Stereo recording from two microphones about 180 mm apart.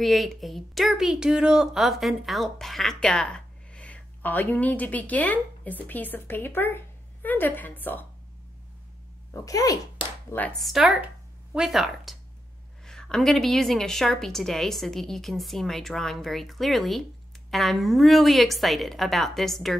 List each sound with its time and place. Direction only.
0.0 s a woman's voice: centre (ahead or behind)
9.3 s speech: 20° left (ahead or behind)
10.4 s a woman's voice: centre (ahead or behind)